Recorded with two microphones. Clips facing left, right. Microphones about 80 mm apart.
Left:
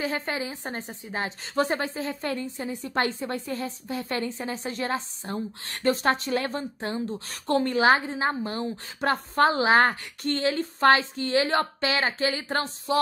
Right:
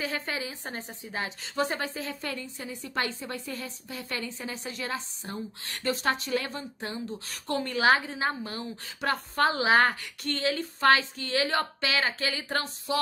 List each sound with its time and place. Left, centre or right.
0.0 s a woman's voice: left